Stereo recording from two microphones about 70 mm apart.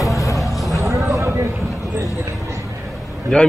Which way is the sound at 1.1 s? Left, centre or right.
Right.